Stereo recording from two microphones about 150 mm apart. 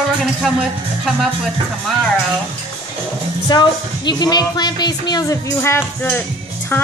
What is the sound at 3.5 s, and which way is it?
A woman's voice, 30° left (ahead or behind).